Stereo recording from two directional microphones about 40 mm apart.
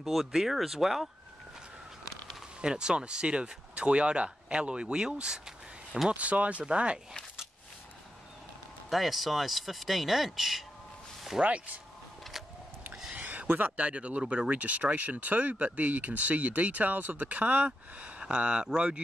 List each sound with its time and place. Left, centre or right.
0.0 s speech: centre
2.6 s speech: centre
6.0 s speech: right
8.9 s speech: centre
11.4 s speech: right
13.1 s a sound: right
13.7 s speech: right
17.9 s a sound: right
18.3 s speech: right